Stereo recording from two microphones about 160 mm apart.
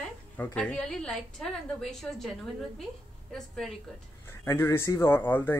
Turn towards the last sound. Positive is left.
turn(degrees=10)  # may be behind; listen again after turning